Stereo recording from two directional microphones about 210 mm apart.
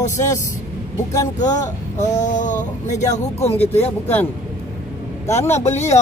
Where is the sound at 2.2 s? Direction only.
35° left (ahead or behind).